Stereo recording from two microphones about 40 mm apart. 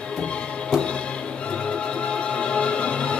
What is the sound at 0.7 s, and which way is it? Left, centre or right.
Music, left.